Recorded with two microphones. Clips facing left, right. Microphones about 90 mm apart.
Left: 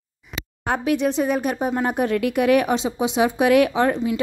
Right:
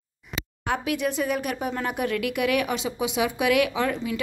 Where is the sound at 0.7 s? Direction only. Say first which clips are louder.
Left 5 dB; 35° left (ahead or behind).